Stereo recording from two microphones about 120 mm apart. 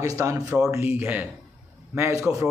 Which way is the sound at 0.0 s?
25° right (ahead or behind).